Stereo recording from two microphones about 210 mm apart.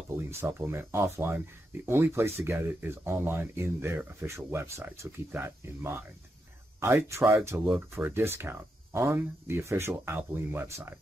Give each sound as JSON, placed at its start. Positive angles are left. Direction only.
{"t": 0.4, "sound": "speech", "side_deg": -10}